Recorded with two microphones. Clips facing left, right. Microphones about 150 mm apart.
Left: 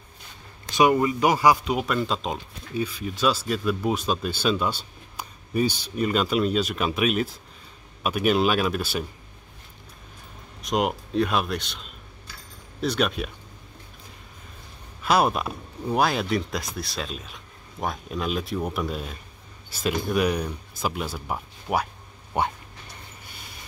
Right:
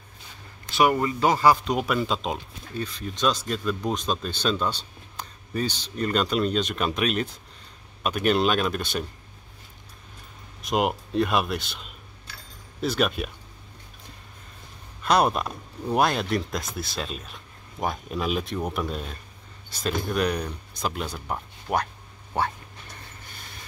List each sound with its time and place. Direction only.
0.7 s speech: 15° left (ahead or behind)
10.6 s speech: centre (ahead or behind)
15.0 s speech: 5° left (ahead or behind)
22.3 s speech: 15° left (ahead or behind)